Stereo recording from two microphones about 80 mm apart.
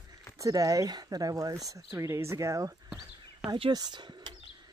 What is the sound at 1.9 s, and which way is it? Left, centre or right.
Speech, right.